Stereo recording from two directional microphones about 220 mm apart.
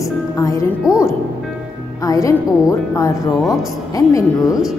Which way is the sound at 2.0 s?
15° left (ahead or behind).